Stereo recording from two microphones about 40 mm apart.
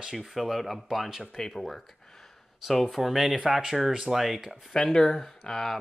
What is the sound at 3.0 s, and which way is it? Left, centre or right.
Speech, centre.